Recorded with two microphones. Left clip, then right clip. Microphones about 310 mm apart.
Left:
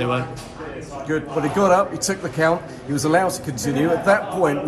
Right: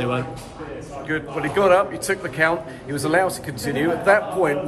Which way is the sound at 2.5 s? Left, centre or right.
Left.